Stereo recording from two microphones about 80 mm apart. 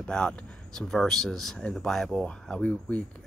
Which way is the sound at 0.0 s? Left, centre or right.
Centre.